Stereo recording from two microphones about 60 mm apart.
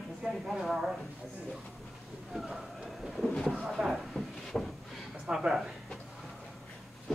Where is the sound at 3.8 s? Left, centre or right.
Centre.